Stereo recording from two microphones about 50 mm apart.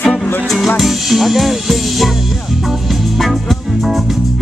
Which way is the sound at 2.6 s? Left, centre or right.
Centre.